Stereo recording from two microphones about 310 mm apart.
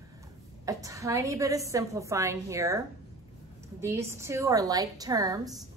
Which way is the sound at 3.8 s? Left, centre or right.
Centre.